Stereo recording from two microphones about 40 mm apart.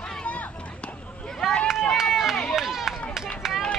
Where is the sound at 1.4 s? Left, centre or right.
Centre.